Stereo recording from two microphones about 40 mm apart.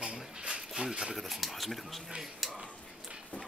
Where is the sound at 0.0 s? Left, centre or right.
Right.